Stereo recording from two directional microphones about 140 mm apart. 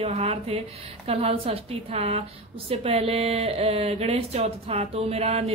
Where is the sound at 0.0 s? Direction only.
45° right (ahead or behind).